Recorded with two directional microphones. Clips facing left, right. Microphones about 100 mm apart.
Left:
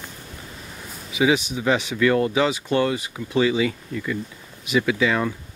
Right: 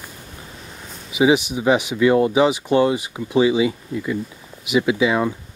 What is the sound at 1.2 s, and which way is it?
Speech, 20° right (ahead or behind).